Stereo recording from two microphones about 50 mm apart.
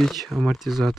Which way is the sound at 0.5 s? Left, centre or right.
Centre.